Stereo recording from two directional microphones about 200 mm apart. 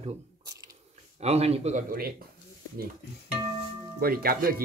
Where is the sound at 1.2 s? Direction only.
30° right (ahead or behind).